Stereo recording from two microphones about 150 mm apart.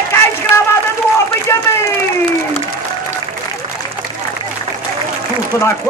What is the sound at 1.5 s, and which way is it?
Speech, 15° left (ahead or behind).